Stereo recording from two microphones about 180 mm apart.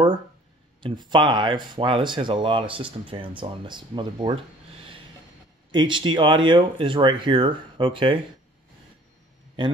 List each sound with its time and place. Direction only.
0.8 s speech: 25° right (ahead or behind)
5.7 s speech: 25° right (ahead or behind)